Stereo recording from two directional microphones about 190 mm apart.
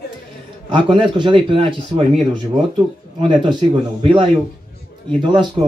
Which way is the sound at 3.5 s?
25° right (ahead or behind).